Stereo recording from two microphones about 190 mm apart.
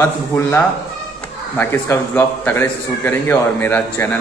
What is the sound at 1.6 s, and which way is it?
A man's voice, 10° left (ahead or behind).